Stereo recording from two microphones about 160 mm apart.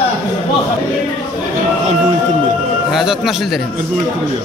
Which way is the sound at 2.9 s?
5° right (ahead or behind).